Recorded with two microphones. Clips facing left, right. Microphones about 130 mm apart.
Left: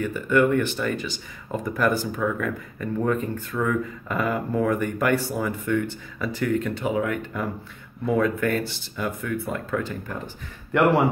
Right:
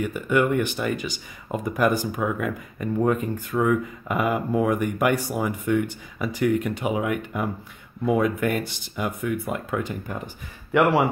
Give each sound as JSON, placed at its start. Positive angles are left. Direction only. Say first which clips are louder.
{"t": 0.0, "sound": "speech", "louder": "left 1 dB", "side_deg": -15}
{"t": 10.7, "sound": "a man's voice", "louder": "even", "side_deg": 0}